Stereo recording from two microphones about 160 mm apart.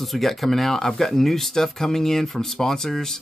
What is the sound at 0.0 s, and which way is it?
Speech, centre (ahead or behind).